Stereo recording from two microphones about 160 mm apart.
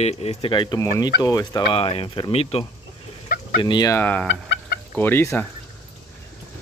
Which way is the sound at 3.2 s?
65° left (ahead or behind).